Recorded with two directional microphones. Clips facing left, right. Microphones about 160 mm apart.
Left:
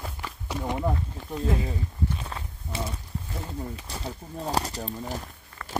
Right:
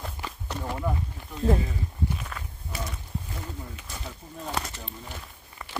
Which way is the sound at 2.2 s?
30° left (ahead or behind).